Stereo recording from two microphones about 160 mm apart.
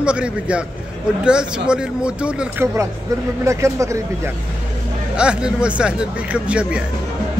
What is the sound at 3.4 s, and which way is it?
Speech, 20° right (ahead or behind).